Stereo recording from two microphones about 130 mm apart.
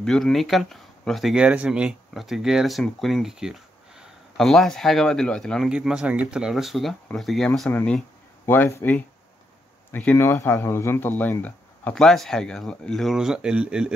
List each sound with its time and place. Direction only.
0.0 s speech: 5° left (ahead or behind)
8.5 s speech: 20° left (ahead or behind); by 13.9 s 5° right (ahead or behind)